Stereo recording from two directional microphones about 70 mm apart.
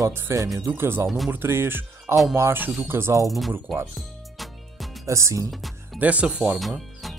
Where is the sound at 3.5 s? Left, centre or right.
Right.